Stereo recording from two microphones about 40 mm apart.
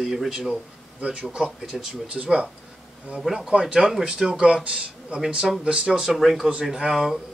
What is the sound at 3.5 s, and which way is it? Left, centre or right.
Speech, right.